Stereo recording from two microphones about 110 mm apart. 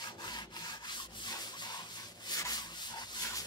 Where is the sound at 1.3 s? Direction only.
40° left (ahead or behind).